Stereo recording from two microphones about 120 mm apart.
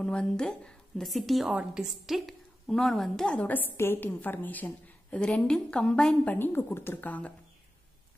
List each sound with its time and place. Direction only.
0.0 s a woman's voice: 5° left (ahead or behind)
6.3 s a woman's voice: 15° left (ahead or behind)